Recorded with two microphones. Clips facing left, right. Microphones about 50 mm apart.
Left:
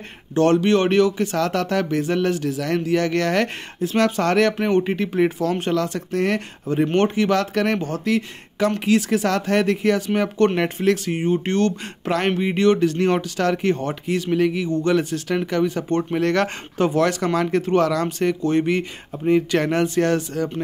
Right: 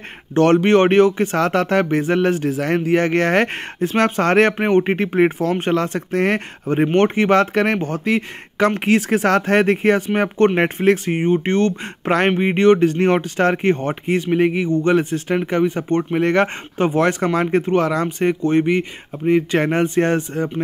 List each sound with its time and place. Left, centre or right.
0.3 s speech: right